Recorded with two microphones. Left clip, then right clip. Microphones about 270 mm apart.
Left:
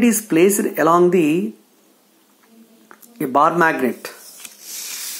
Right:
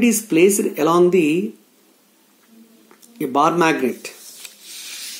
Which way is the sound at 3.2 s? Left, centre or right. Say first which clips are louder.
Left 2 dB; centre.